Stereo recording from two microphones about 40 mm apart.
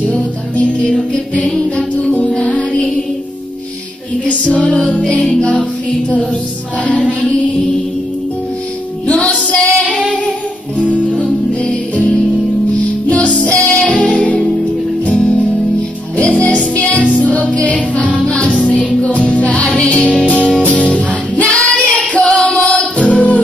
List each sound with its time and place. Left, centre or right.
0.1 s music: left
4.3 s music: left
9.0 s female singing: left
11.1 s music: left
13.1 s music: left